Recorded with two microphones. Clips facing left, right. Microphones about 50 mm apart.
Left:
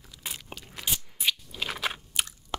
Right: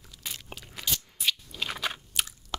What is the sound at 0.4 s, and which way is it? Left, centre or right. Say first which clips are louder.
Crunch: left 1 dB; centre.